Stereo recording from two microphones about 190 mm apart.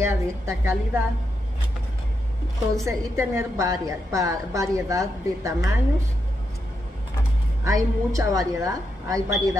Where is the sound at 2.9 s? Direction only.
15° right (ahead or behind).